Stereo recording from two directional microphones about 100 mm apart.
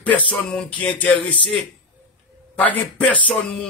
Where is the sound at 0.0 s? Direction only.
15° left (ahead or behind).